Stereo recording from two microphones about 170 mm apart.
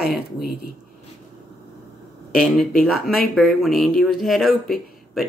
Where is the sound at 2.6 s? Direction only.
Centre (ahead or behind).